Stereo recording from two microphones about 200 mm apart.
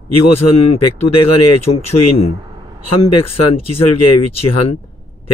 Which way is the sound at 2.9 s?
30° left (ahead or behind).